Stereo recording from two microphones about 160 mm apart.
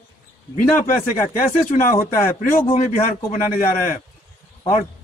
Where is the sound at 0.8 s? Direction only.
55° left (ahead or behind).